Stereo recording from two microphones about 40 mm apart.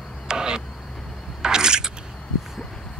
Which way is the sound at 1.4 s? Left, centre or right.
Centre.